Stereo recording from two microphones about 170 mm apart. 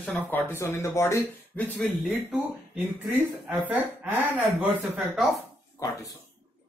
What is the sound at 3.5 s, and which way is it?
Speech, 10° right (ahead or behind).